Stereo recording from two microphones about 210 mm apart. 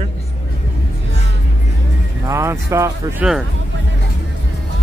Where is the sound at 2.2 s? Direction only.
15° right (ahead or behind).